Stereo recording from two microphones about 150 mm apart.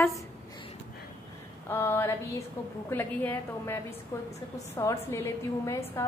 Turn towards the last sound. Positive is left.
turn(degrees=20)  # may be behind; listen again after turning